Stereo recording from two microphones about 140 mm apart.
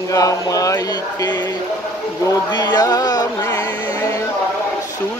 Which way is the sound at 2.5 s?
30° left (ahead or behind).